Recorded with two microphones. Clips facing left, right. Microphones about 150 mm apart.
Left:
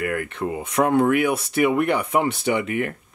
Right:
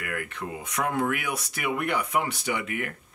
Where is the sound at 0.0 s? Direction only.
35° left (ahead or behind).